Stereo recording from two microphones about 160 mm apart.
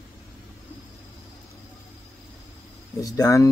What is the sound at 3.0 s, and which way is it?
Speech, 20° left (ahead or behind).